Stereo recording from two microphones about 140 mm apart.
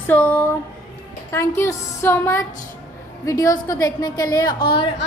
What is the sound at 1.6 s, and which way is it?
A woman's voice, 15° left (ahead or behind).